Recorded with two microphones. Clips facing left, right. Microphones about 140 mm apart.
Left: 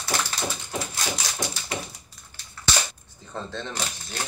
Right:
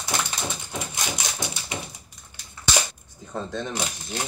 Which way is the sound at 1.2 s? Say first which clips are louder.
Right 1 dB; 20° right (ahead or behind).